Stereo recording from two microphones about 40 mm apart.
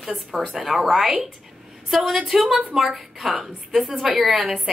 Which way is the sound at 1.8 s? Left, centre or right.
Centre.